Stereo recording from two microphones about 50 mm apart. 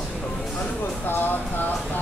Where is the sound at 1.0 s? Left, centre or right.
Left.